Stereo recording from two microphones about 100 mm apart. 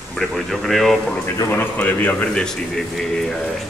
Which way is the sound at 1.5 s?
20° left (ahead or behind).